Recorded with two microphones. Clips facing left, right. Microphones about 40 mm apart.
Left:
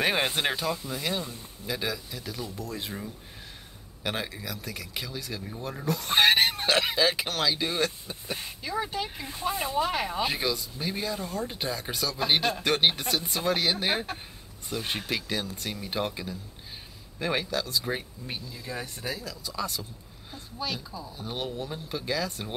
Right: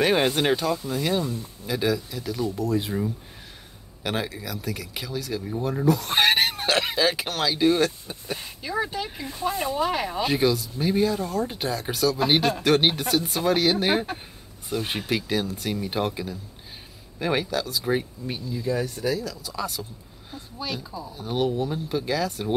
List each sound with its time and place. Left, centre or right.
0.0 s speech: centre
18.9 s speech: centre
19.4 s speech: centre